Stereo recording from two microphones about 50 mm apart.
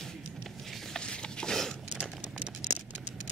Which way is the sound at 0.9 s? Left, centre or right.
Centre.